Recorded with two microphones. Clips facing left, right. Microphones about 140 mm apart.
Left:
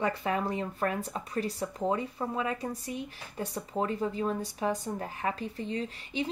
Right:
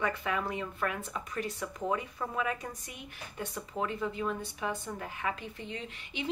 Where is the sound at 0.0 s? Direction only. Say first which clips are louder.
Left 3 dB; 35° left (ahead or behind).